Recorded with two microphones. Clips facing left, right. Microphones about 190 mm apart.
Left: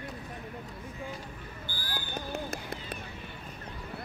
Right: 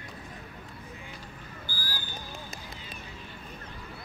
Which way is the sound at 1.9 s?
60° left (ahead or behind).